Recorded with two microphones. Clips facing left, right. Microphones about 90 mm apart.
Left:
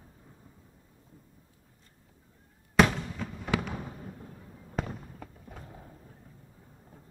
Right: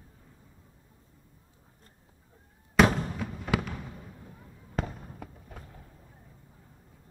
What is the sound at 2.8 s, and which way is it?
Fireworks, centre (ahead or behind).